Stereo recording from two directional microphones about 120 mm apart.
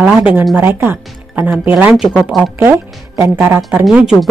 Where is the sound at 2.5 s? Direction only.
20° right (ahead or behind).